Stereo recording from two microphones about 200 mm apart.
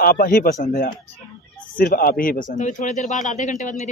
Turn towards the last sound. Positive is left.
turn(degrees=40)  # may be behind; listen again after turning